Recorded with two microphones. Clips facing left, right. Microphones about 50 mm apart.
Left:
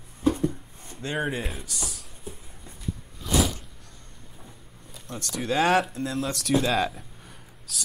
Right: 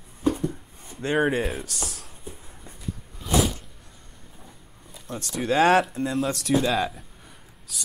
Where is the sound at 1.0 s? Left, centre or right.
Centre.